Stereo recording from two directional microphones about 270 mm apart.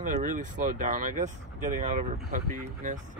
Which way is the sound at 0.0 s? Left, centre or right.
Right.